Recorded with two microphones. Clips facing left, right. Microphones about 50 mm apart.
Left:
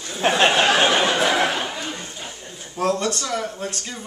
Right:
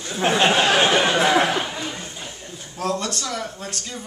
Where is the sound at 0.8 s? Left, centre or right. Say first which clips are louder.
Even; centre.